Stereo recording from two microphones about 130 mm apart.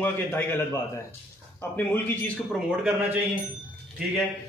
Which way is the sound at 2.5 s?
5° right (ahead or behind).